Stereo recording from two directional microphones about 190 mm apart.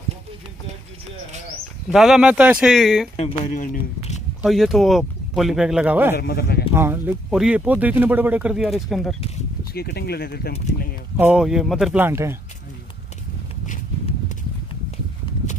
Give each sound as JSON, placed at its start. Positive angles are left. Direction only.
{"t": 1.9, "sound": "speech", "side_deg": 0}
{"t": 3.2, "sound": "speech", "side_deg": 40}
{"t": 4.4, "sound": "speech", "side_deg": 0}
{"t": 6.1, "sound": "speech", "side_deg": 55}
{"t": 6.7, "sound": "speech", "side_deg": -10}
{"t": 9.8, "sound": "speech", "side_deg": 55}
{"t": 11.1, "sound": "speech", "side_deg": -5}